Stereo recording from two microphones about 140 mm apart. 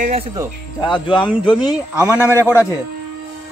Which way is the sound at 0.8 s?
35° left (ahead or behind).